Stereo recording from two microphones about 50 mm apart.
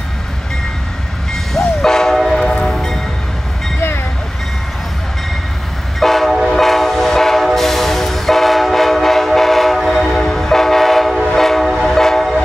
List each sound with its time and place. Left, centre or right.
1.3 s train: centre
2.7 s music: centre
5.9 s train: centre